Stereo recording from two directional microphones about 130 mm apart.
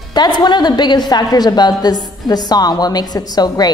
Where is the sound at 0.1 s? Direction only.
35° left (ahead or behind).